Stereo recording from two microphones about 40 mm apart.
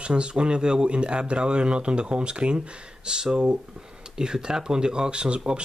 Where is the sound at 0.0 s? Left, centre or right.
Right.